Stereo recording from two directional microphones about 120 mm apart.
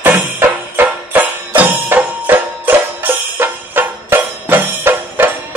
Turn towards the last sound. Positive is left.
turn(degrees=-20)  # may be behind; listen again after turning